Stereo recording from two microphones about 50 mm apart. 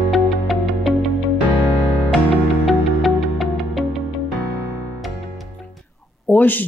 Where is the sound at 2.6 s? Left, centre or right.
Centre.